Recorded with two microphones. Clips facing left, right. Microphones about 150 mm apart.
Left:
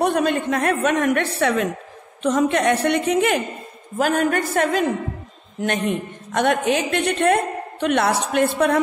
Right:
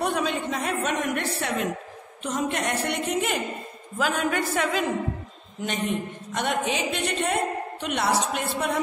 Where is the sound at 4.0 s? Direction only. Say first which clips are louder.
Left 6 dB; 50° left (ahead or behind).